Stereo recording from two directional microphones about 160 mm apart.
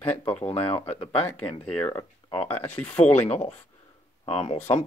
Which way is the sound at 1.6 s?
10° left (ahead or behind).